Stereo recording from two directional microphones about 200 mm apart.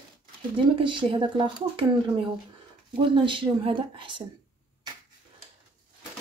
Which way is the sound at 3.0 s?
25° right (ahead or behind).